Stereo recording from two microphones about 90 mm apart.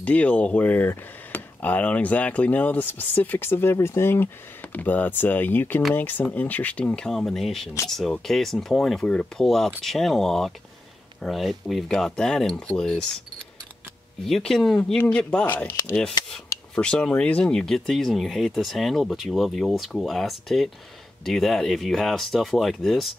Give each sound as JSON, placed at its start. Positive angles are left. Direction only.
{"t": 0.0, "sound": "speech", "side_deg": 15}
{"t": 14.2, "sound": "speech", "side_deg": 5}
{"t": 15.4, "sound": "speech", "side_deg": 20}
{"t": 16.7, "sound": "speech", "side_deg": 10}